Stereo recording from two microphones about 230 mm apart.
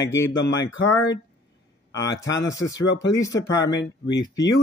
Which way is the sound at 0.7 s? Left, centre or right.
Left.